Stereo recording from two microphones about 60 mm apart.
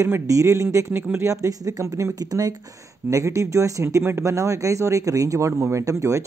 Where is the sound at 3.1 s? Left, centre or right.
Right.